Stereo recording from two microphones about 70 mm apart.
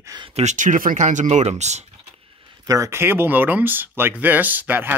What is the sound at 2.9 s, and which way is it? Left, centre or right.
Speech, right.